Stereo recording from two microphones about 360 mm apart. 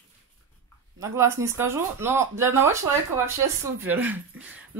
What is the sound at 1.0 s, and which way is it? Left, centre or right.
Speech, centre.